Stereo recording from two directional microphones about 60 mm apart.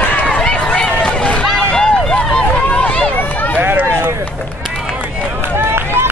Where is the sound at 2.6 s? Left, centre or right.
Left.